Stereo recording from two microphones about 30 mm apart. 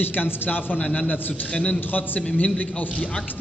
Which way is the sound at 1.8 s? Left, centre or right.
Left.